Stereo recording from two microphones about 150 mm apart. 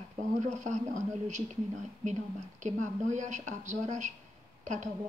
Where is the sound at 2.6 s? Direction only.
55° right (ahead or behind).